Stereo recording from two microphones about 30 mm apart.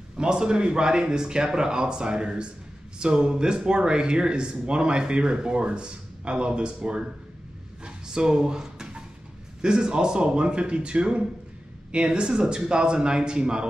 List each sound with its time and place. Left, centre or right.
0.2 s a man's voice: right
7.8 s a sound: right
9.6 s a man's voice: right